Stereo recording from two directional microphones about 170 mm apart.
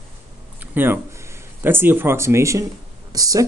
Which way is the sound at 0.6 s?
10° right (ahead or behind).